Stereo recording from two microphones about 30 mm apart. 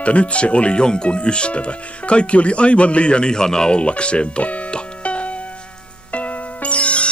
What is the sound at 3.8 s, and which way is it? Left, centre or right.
Speech, left.